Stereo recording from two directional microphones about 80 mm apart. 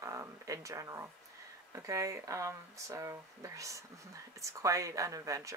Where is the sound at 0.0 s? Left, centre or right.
Right.